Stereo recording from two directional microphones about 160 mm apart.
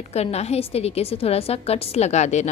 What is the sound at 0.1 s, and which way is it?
A woman's voice, 40° left (ahead or behind).